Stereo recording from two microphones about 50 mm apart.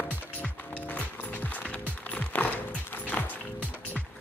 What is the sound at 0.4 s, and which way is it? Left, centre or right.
Music, left.